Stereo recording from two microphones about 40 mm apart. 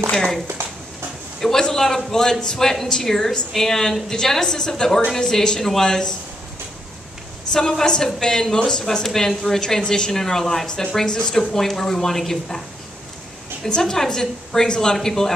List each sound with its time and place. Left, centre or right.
0.6 s a sound: right
1.4 s speech: centre
7.5 s speech: centre
13.7 s speech: centre